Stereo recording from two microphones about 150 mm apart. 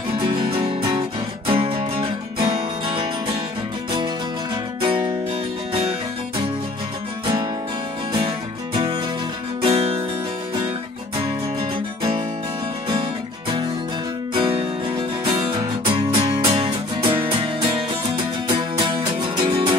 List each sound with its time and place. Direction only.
0.3 s music: 35° right (ahead or behind)
4.8 s music: 35° right (ahead or behind)
8.7 s music: 35° right (ahead or behind)
14.3 s music: 35° right (ahead or behind)